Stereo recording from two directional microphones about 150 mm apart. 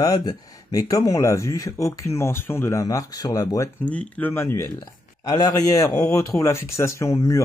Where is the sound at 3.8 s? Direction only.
10° left (ahead or behind).